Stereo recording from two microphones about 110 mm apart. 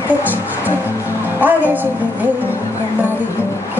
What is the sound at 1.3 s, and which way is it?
Speech, 15° right (ahead or behind).